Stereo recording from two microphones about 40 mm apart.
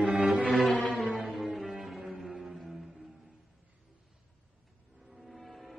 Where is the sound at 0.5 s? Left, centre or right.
Centre.